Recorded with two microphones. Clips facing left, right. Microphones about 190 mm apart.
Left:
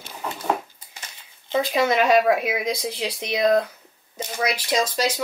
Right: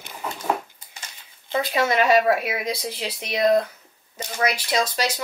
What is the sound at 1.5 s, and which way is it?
Speech, 10° left (ahead or behind).